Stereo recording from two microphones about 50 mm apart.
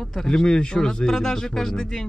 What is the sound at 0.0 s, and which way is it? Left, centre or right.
A man's voice, centre.